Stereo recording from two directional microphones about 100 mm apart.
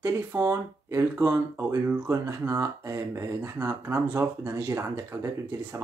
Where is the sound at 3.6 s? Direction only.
30° right (ahead or behind).